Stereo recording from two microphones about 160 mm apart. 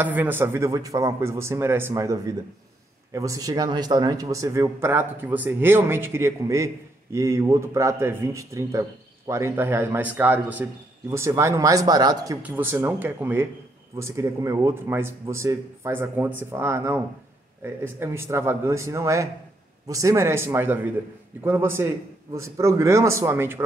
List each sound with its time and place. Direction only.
0.0 s a man's voice: 10° right (ahead or behind)
12.4 s a man's voice: 10° right (ahead or behind)